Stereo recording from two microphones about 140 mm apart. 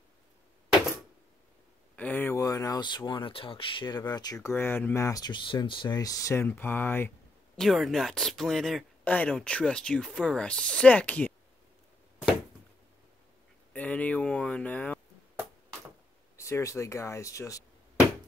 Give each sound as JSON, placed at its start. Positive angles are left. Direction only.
{"t": 2.0, "sound": "speech", "side_deg": 10}
{"t": 7.5, "sound": "speech", "side_deg": 0}
{"t": 13.7, "sound": "a sound", "side_deg": 10}
{"t": 16.3, "sound": "speech", "side_deg": 20}